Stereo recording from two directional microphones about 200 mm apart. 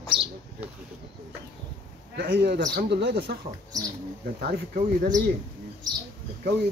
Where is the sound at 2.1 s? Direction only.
55° right (ahead or behind).